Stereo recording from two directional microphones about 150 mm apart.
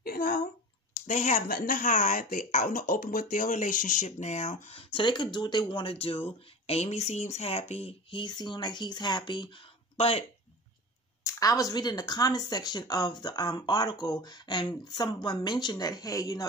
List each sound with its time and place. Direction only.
0.0 s a sound: 75° left (ahead or behind)
1.0 s speech: 55° left (ahead or behind); by 10.2 s 40° left (ahead or behind)
11.2 s speech: 25° left (ahead or behind)